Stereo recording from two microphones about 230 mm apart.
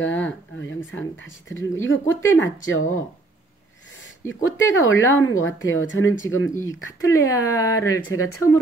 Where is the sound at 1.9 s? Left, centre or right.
Left.